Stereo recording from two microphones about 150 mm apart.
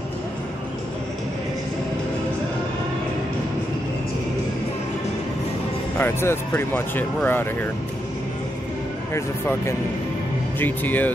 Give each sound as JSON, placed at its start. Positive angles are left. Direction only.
{"t": 5.9, "sound": "speech", "side_deg": 15}
{"t": 9.1, "sound": "speech", "side_deg": 20}